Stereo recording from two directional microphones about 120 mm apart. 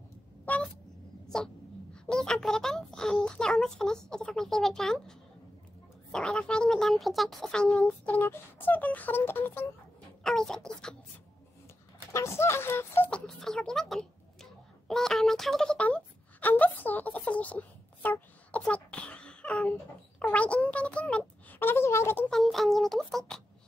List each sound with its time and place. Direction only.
0.5 s a sound: 15° left (ahead or behind)
2.0 s a child's voice: 5° left (ahead or behind)
6.1 s speech: 5° left (ahead or behind)
10.2 s speech: 5° left (ahead or behind)
12.1 s speech: 20° left (ahead or behind)
13.1 s speech: 5° left (ahead or behind); by 22.2 s 20° left (ahead or behind)
22.3 s speech: centre (ahead or behind)